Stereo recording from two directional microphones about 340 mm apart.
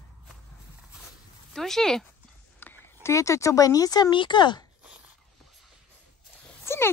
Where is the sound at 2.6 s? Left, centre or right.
Centre.